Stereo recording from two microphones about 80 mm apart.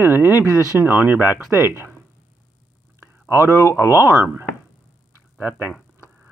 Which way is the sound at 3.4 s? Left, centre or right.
Left.